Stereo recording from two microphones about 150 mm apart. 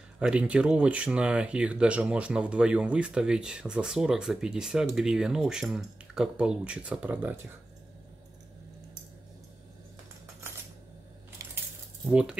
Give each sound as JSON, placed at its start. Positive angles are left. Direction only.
{"t": 0.2, "sound": "speech", "side_deg": -5}
{"t": 11.4, "sound": "coin", "side_deg": -20}
{"t": 12.1, "sound": "speech", "side_deg": -5}